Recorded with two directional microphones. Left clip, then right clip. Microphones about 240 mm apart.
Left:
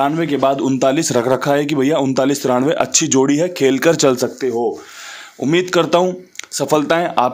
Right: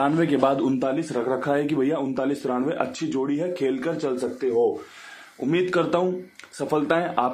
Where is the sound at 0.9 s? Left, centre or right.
Left.